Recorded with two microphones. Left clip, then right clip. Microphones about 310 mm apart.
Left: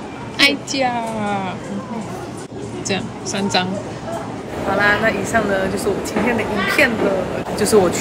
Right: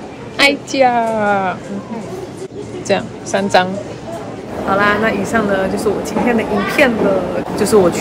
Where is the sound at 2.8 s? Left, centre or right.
Centre.